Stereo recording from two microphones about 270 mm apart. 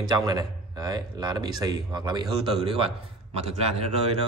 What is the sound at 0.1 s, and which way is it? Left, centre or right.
Speech, centre.